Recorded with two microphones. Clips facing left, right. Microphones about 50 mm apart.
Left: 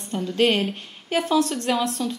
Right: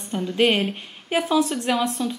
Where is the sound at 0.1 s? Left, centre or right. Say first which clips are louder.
Right 1 dB; centre.